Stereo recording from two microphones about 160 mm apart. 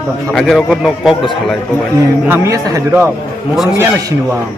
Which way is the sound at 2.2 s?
15° right (ahead or behind).